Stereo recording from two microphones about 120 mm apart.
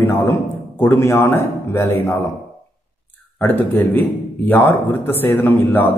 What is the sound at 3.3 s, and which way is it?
A man's voice, 15° left (ahead or behind).